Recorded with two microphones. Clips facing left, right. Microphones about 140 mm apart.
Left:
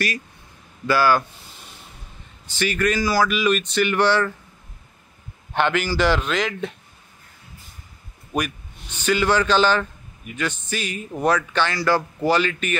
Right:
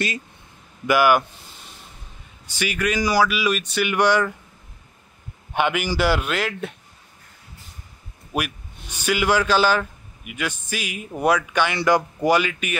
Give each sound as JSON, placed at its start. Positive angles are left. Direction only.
{"t": 0.8, "sound": "speech", "side_deg": -15}
{"t": 2.4, "sound": "speech", "side_deg": -10}
{"t": 5.5, "sound": "speech", "side_deg": -10}
{"t": 8.3, "sound": "a man's voice", "side_deg": -5}